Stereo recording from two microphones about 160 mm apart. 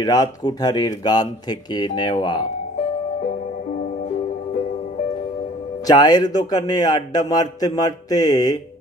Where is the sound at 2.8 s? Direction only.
45° left (ahead or behind).